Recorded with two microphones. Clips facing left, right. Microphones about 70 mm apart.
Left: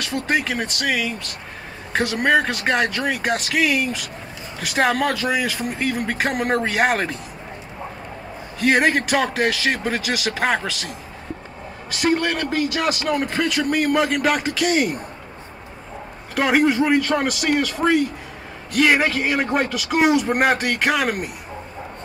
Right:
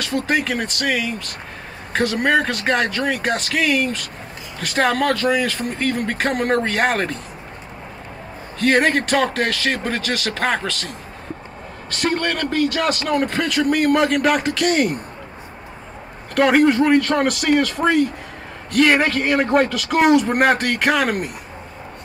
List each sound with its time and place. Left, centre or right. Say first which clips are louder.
0.0 s a man's voice: right 2 dB; centre
8.5 s a man's voice: right 1 dB; centre
11.9 s a man's voice: left 1 dB; centre
16.3 s a man's voice: right 3 dB; centre